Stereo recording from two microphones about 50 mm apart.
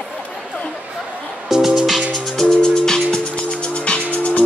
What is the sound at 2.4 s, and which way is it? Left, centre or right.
Music, centre.